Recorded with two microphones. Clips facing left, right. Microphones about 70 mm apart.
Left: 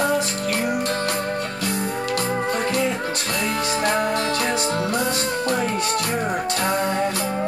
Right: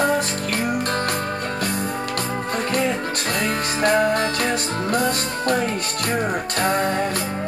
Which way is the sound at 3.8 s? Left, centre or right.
Right.